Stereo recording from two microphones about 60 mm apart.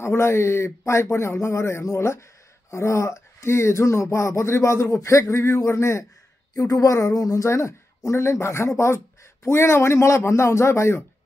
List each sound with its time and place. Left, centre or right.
0.0 s speech: left
6.7 s speech: left